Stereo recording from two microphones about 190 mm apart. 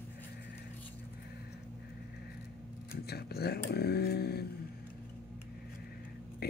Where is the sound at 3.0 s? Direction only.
55° left (ahead or behind).